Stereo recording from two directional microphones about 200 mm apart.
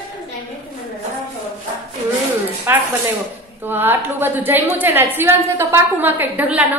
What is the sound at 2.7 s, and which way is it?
A woman's voice, 10° right (ahead or behind).